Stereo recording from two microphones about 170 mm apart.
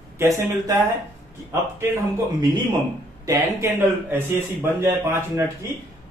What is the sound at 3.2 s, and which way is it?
A man's voice, 15° right (ahead or behind).